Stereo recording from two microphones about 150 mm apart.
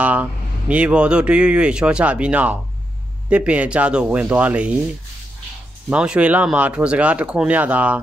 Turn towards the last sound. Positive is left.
turn(degrees=-10)  # may be behind; listen again after turning